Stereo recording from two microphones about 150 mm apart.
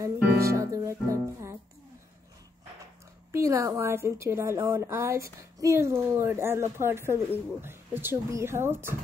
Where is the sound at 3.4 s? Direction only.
20° right (ahead or behind).